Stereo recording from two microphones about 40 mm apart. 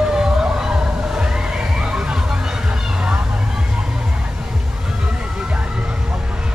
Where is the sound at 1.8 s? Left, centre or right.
Centre.